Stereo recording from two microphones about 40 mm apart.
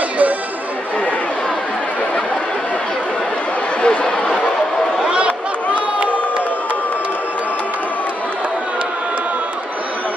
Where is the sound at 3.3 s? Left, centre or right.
Left.